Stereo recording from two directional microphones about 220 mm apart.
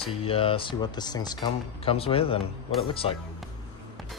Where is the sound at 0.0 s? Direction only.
25° left (ahead or behind).